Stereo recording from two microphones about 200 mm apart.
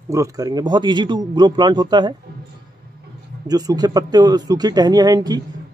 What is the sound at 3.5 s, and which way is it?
Speech, 20° right (ahead or behind).